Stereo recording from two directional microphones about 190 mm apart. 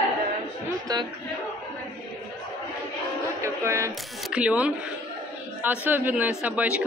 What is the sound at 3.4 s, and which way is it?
A woman's voice, 15° right (ahead or behind).